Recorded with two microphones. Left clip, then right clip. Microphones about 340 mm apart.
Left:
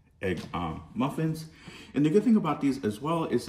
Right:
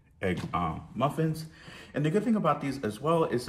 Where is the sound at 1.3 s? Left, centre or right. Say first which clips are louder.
Even; centre.